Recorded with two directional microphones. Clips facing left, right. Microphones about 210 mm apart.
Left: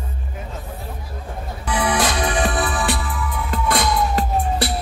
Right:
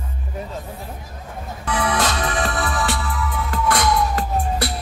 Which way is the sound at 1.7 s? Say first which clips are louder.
Left 1 dB; 15° left (ahead or behind).